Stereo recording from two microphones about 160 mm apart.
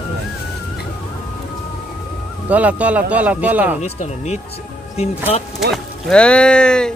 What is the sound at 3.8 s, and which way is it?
Speech, 45° left (ahead or behind).